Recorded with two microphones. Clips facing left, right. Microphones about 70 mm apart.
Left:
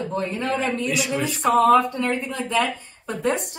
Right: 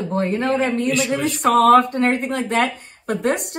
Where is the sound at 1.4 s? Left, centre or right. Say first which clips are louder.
Right 3 dB; right.